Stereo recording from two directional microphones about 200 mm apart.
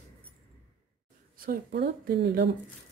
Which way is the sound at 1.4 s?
50° right (ahead or behind).